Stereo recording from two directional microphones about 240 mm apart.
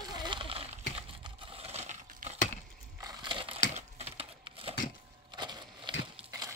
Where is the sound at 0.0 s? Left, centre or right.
Centre.